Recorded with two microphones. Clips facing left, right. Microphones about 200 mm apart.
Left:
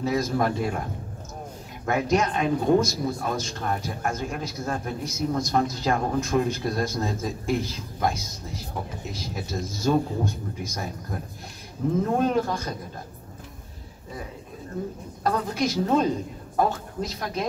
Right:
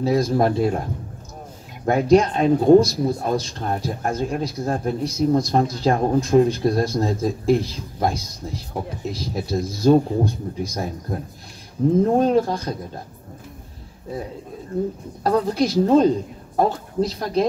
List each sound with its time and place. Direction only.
0.0 s speech: 35° right (ahead or behind)
1.9 s speech: 35° right (ahead or behind)
15.2 s speech: 35° right (ahead or behind)